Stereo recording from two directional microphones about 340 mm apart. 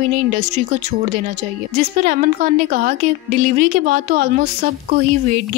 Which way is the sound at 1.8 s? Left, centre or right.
Right.